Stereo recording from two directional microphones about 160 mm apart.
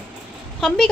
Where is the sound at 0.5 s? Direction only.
Centre (ahead or behind).